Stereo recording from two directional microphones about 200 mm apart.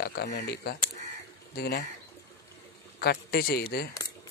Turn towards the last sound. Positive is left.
turn(degrees=50)  # may be behind; listen again after turning